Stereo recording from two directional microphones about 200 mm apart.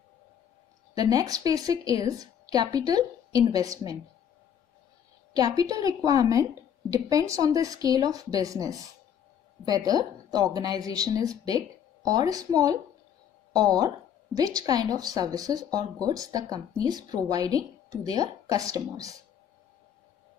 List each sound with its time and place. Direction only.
0.9 s a woman's voice: 20° right (ahead or behind)
5.3 s a woman's voice: 20° right (ahead or behind)